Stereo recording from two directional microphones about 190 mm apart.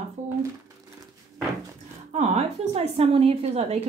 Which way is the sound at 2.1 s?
35° right (ahead or behind).